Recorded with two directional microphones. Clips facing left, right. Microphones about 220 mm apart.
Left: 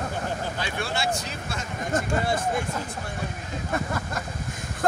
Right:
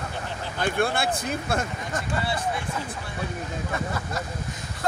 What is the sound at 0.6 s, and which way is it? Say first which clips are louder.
Speech: right 5 dB; 50° right (ahead or behind).